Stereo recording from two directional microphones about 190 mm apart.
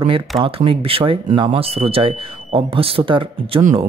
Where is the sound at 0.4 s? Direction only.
30° right (ahead or behind).